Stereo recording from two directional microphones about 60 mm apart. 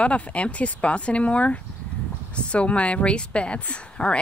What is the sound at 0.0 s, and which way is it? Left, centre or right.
A woman's voice, left.